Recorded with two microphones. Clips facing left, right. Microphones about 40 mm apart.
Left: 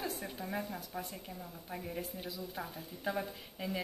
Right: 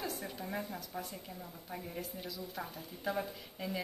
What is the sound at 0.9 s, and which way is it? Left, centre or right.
A woman's voice, centre.